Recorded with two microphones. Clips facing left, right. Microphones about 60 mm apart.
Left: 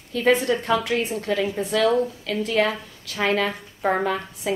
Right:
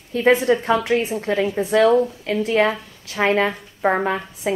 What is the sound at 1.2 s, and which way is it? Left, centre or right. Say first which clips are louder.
Speech: right 3 dB; right.